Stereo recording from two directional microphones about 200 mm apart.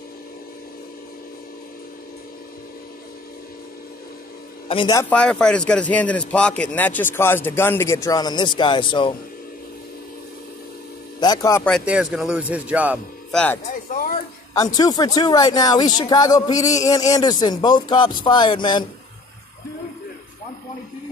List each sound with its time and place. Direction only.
4.6 s speech: 25° left (ahead or behind)
5.1 s speech: 5° left (ahead or behind); by 9.1 s 25° left (ahead or behind)
11.1 s a sound: 20° left (ahead or behind)
11.6 s speech: centre (ahead or behind)
13.3 s speech: 5° left (ahead or behind)
14.5 s speech: 20° left (ahead or behind)